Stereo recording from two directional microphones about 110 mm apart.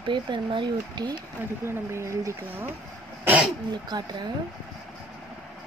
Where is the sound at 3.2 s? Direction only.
10° right (ahead or behind).